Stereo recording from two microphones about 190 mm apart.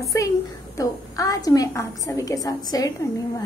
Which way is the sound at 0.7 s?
20° left (ahead or behind).